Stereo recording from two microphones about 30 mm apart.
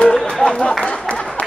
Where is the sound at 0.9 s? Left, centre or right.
Left.